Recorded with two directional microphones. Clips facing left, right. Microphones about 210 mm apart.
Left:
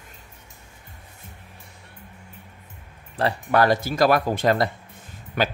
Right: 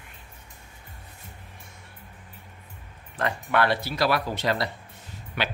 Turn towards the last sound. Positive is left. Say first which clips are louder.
# left 6 dB
turn(degrees=45)  # may be behind; listen again after turning